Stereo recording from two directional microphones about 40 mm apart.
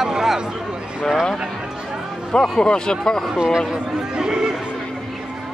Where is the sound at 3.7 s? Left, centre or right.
Right.